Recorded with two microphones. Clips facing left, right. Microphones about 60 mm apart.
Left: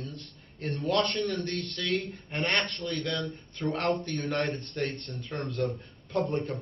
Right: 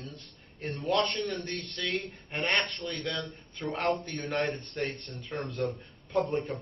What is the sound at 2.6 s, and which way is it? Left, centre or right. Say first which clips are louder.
Speech: left 1 dB; right.